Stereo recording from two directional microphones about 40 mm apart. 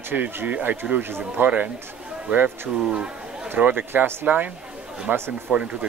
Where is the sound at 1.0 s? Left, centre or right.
Right.